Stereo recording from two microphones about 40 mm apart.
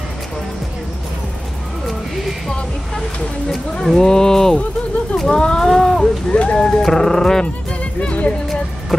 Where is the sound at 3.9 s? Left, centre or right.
Centre.